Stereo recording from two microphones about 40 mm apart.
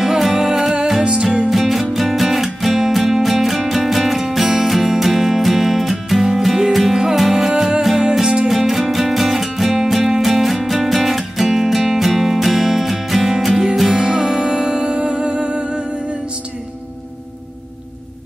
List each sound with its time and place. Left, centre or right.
0.0 s music: centre; by 15.8 s right